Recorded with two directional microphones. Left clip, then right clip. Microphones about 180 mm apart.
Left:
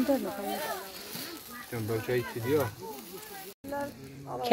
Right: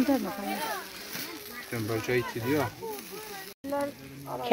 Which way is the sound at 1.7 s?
55° right (ahead or behind).